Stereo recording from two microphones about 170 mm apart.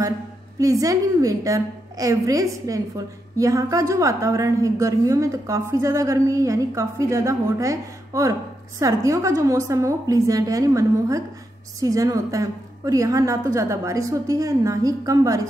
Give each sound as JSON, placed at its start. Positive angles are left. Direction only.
{"t": 0.6, "sound": "a woman's voice", "side_deg": -20}